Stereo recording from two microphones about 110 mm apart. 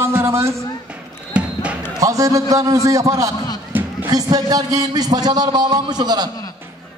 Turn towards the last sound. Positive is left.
turn(degrees=-40)  # may be behind; listen again after turning